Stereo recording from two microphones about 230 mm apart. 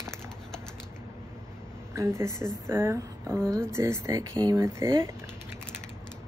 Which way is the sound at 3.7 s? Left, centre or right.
Centre.